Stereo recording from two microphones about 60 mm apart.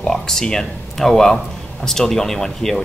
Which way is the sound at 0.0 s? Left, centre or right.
Centre.